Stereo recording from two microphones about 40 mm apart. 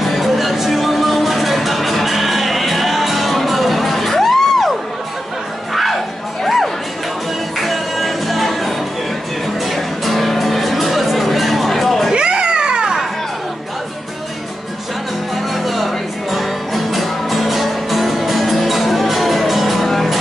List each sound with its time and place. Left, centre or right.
0.0 s music: centre
6.4 s music: centre
12.1 s music: right
15.3 s music: centre